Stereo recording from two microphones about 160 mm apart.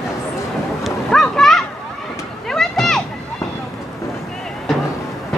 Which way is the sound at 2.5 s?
Centre (ahead or behind).